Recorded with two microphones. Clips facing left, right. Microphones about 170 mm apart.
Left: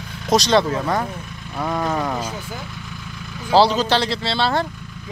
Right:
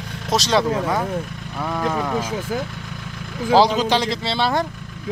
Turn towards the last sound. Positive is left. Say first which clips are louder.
# even
turn(degrees=-15)  # may be behind; listen again after turning